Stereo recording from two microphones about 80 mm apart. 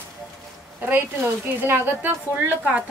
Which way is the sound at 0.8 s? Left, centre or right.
Right.